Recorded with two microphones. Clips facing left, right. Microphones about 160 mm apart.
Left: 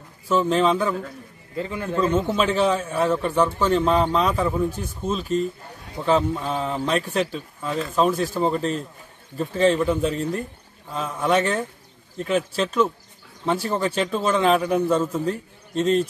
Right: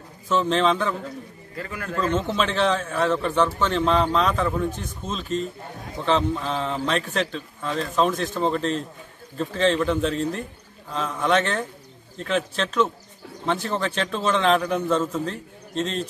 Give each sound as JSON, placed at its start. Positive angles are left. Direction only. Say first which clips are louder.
{"t": 0.3, "sound": "speech", "louder": "left 2 dB", "side_deg": 10}
{"t": 1.6, "sound": "a man's voice", "louder": "left 5 dB", "side_deg": 25}
{"t": 2.0, "sound": "speech", "louder": "left 2 dB", "side_deg": 10}